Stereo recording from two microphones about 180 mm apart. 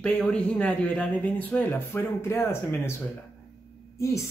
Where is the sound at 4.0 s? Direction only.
15° left (ahead or behind).